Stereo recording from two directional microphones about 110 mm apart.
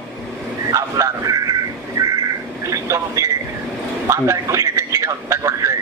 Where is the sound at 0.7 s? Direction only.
30° right (ahead or behind).